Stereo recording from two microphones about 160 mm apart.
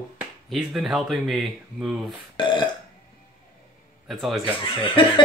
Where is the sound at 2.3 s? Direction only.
30° left (ahead or behind).